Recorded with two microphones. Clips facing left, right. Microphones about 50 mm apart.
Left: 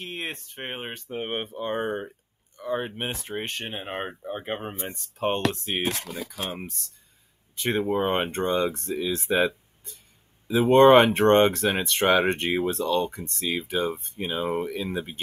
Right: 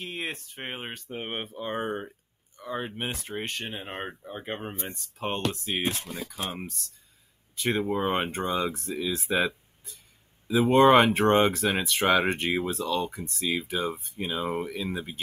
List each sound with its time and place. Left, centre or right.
0.0 s speech: centre
3.9 s speech: left
4.9 s speech: centre
5.9 s speech: left
6.6 s speech: centre